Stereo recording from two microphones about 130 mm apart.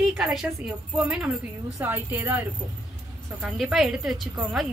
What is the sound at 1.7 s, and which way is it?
Speech, 15° right (ahead or behind).